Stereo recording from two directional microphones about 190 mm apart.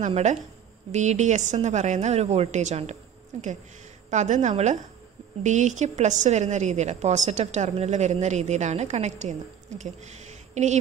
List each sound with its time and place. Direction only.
0.0 s a woman's voice: 40° right (ahead or behind)
10.5 s speech: 40° right (ahead or behind)